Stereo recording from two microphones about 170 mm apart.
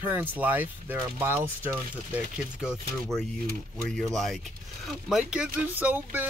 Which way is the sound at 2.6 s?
Centre (ahead or behind).